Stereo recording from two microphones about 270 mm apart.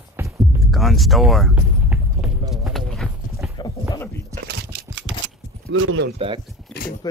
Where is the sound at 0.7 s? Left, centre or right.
Centre.